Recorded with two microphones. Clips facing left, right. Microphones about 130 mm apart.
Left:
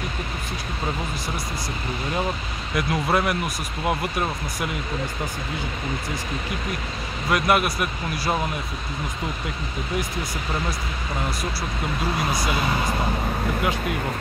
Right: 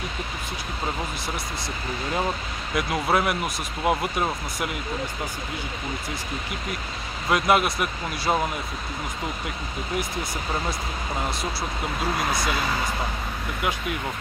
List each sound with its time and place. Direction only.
2.9 s speech: 10° right (ahead or behind)
7.2 s speech: 20° right (ahead or behind)
12.3 s speech: 15° left (ahead or behind)